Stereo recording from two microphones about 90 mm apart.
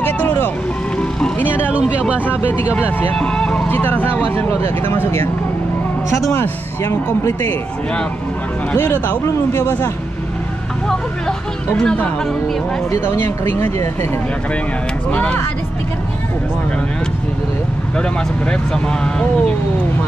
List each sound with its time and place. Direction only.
0.0 s vehicle: 20° left (ahead or behind)
1.5 s speech: 15° right (ahead or behind)
2.2 s speech: 25° left (ahead or behind)
3.2 s speech: 10° left (ahead or behind)
3.6 s speech: 20° left (ahead or behind)
9.0 s speech: 25° left (ahead or behind)
10.9 s speech: 5° left (ahead or behind)
12.9 s speech: 30° left (ahead or behind)
15.0 s speech: 15° left (ahead or behind)
18.5 s speech: 10° left (ahead or behind)